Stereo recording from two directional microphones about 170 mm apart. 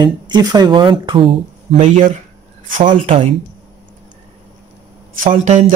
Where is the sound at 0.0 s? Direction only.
25° right (ahead or behind).